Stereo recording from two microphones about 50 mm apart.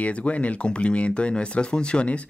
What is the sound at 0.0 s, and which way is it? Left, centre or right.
Speech, left.